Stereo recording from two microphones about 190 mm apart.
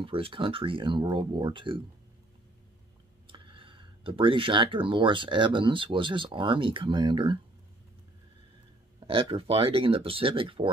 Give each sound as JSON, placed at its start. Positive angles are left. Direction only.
{"t": 0.0, "sound": "speech", "side_deg": -30}
{"t": 3.3, "sound": "speech", "side_deg": -25}
{"t": 9.0, "sound": "speech", "side_deg": -30}